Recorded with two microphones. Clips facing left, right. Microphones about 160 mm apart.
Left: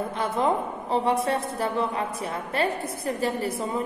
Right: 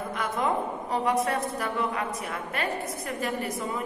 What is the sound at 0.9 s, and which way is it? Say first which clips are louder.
A woman's voice: left 2 dB; 30° left (ahead or behind).